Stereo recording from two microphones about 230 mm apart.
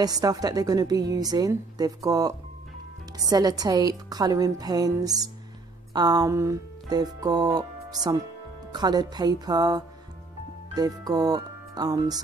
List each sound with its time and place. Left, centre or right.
0.0 s a woman's voice: centre